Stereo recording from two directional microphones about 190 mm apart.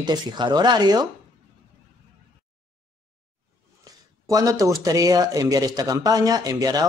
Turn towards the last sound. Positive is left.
turn(degrees=-20)  # may be behind; listen again after turning